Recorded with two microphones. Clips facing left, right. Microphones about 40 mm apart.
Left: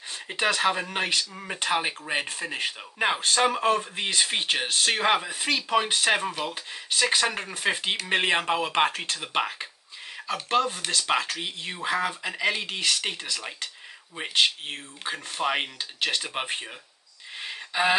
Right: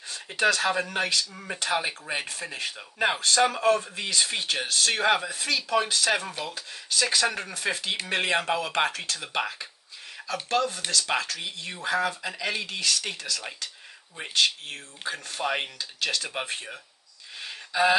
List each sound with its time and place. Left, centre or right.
0.3 s speech: left
5.3 s speech: left
17.4 s a sound: left